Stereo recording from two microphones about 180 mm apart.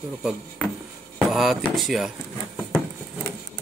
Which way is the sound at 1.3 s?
Centre (ahead or behind).